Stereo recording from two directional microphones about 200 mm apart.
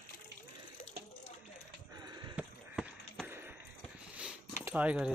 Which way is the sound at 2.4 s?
5° right (ahead or behind).